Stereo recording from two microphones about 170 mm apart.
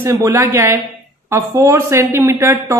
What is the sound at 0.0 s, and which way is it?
A woman's voice, 20° right (ahead or behind).